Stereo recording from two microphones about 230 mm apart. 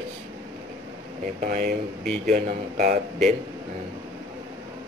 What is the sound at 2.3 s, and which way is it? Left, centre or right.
Speech, right.